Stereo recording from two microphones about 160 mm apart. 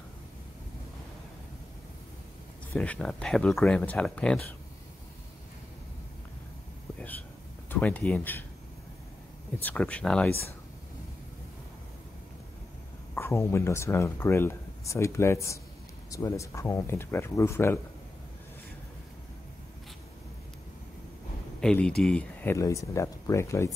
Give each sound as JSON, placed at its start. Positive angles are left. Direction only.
{"t": 2.7, "sound": "speech", "side_deg": 5}
{"t": 7.7, "sound": "speech", "side_deg": 10}
{"t": 9.6, "sound": "speech", "side_deg": 10}
{"t": 13.1, "sound": "speech", "side_deg": 15}
{"t": 21.5, "sound": "speech", "side_deg": 5}